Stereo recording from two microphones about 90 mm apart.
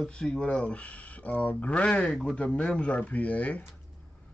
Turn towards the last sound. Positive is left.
turn(degrees=15)  # may be behind; listen again after turning